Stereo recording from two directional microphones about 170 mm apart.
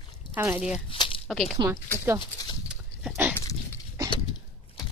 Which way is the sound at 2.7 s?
10° right (ahead or behind).